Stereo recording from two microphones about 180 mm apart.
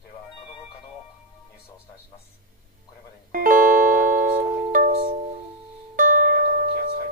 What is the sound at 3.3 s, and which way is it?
Music, 50° right (ahead or behind).